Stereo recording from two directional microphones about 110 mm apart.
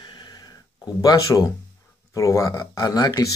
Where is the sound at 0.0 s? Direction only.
40° left (ahead or behind).